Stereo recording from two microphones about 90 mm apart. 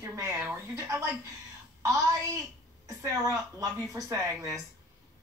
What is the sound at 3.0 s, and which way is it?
A woman's voice, 35° right (ahead or behind).